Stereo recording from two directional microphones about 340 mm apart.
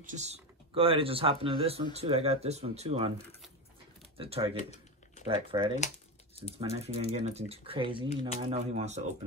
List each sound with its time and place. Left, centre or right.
0.0 s speech: right
4.2 s speech: centre